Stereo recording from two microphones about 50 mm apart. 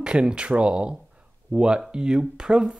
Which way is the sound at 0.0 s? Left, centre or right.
Centre.